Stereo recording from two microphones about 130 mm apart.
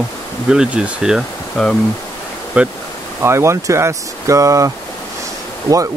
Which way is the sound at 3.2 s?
20° right (ahead or behind).